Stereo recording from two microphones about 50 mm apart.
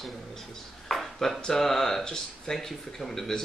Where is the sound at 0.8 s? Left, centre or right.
Centre.